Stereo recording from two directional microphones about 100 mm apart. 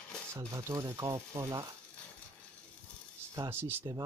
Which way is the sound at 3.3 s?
25° right (ahead or behind).